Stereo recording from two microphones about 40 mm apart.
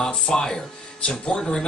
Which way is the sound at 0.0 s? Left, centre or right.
Centre.